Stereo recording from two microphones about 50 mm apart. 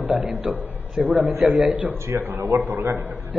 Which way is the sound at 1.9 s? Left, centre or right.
Right.